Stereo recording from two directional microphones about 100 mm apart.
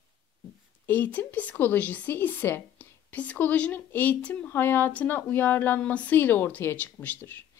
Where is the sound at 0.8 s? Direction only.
15° left (ahead or behind).